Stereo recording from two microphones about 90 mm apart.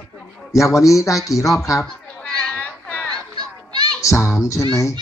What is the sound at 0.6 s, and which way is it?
Speech, 35° left (ahead or behind).